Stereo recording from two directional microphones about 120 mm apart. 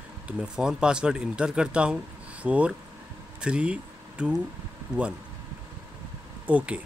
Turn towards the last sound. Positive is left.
turn(degrees=-10)  # may be behind; listen again after turning